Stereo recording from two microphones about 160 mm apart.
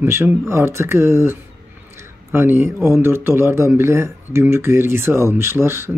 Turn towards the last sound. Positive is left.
turn(degrees=-15)  # may be behind; listen again after turning